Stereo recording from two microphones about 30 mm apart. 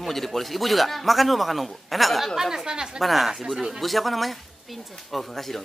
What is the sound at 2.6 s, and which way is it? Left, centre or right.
Speech, right.